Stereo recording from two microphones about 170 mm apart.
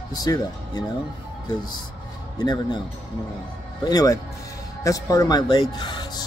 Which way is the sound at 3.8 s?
20° left (ahead or behind).